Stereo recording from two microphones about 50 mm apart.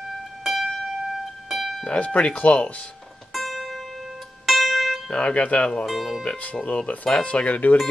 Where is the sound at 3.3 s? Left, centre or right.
Centre.